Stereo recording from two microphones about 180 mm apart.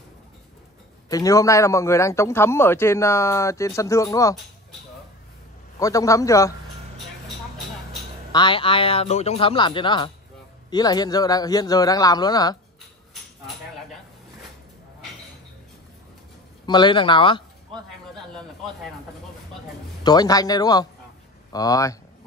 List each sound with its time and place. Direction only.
1.1 s a man's voice: 20° left (ahead or behind)
5.8 s a man's voice: 20° left (ahead or behind)
8.3 s a man's voice: 25° left (ahead or behind)
16.6 s a man's voice: 25° left (ahead or behind)
20.0 s a man's voice: 20° left (ahead or behind)